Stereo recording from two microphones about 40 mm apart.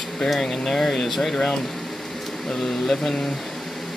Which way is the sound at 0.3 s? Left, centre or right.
Centre.